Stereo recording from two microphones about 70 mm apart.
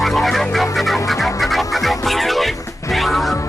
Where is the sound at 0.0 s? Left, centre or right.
Centre.